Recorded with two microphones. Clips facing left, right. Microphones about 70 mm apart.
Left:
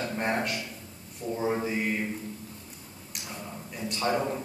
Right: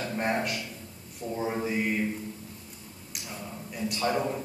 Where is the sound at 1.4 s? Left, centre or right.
Centre.